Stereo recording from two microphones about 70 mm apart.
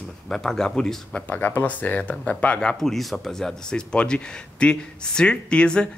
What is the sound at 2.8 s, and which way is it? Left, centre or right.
Speech, centre.